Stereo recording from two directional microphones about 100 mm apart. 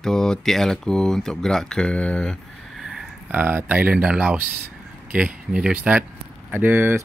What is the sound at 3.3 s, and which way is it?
Speech, 15° right (ahead or behind).